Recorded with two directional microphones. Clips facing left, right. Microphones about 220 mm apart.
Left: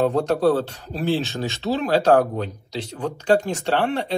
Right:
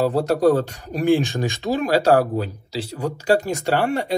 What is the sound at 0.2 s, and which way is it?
Speech, 10° right (ahead or behind).